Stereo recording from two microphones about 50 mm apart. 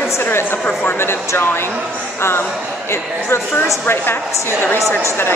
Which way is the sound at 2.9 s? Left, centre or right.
Left.